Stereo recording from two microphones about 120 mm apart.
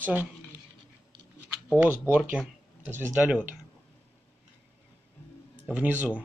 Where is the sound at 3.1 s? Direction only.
10° right (ahead or behind).